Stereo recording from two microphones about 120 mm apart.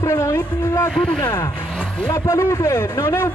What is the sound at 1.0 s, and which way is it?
Speech, 45° left (ahead or behind).